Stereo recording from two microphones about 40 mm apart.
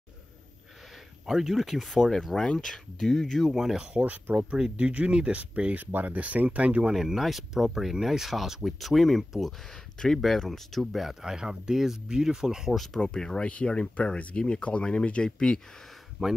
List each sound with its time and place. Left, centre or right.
1.2 s speech: centre
2.0 s speech: centre
3.0 s speech: centre
4.0 s speech: right
5.8 s speech: right
6.1 s speech: right
6.9 s speech: centre
11.2 s speech: centre
12.7 s speech: centre
13.0 s speech: centre
13.5 s speech: left
16.2 s speech: centre